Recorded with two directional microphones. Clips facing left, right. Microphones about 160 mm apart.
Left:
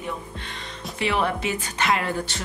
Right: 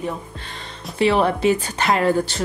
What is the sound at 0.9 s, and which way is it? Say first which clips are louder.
A woman's voice: right 7 dB; 35° right (ahead or behind).